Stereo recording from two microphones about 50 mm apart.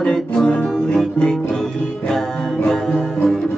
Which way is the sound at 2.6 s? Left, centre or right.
Centre.